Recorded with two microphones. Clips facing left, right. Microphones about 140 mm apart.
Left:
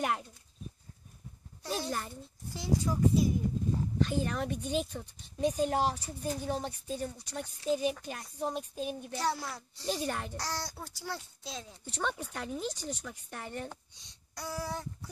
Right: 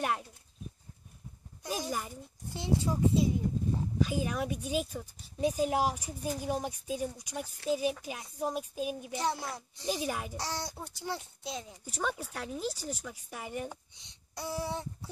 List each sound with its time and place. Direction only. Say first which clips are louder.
0.0 s speech: even; centre (ahead or behind)
1.6 s speech: even; 10° right (ahead or behind)
2.5 s a child's voice: even; 25° right (ahead or behind)
4.0 s speech: even; 5° right (ahead or behind)
9.1 s a child's voice: even; 20° right (ahead or behind)
9.8 s speech: even; 5° right (ahead or behind)
10.3 s speech: right 1 dB; 20° right (ahead or behind)
14.3 s a child's voice: right 2 dB; 25° right (ahead or behind)